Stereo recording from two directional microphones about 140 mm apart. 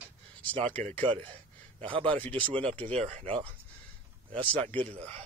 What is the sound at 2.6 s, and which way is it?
Speech, 10° left (ahead or behind).